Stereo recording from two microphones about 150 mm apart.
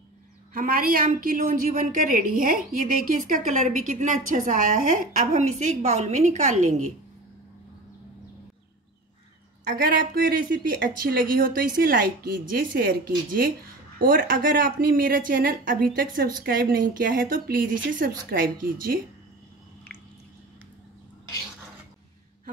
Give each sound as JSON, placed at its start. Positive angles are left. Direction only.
{"t": 0.5, "sound": "a woman's voice", "side_deg": -75}
{"t": 10.1, "sound": "a woman's voice", "side_deg": -75}